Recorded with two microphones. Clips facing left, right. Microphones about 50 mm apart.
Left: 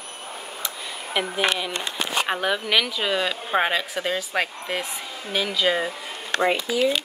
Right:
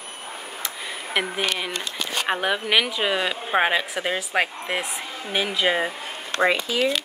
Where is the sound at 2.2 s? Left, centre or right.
Centre.